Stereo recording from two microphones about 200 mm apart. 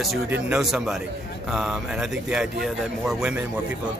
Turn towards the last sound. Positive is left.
turn(degrees=-5)  # may be behind; listen again after turning